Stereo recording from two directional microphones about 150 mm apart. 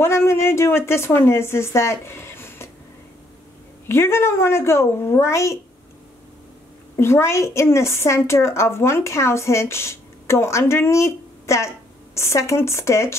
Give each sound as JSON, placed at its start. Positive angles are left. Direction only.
{"t": 0.0, "sound": "a woman's voice", "side_deg": 15}
{"t": 3.9, "sound": "a woman's voice", "side_deg": 15}
{"t": 7.0, "sound": "a woman's voice", "side_deg": 15}